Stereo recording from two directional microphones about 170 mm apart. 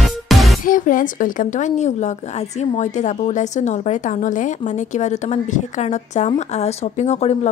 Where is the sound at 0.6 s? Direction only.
55° left (ahead or behind).